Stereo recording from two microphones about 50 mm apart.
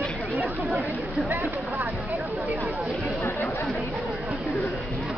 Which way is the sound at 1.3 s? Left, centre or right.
Right.